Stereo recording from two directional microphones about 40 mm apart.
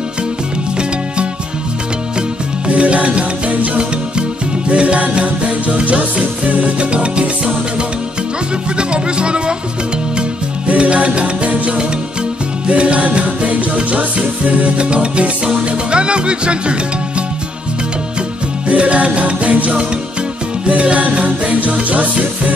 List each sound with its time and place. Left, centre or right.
2.7 s music: right
8.7 s music: right
10.7 s music: right
18.7 s music: right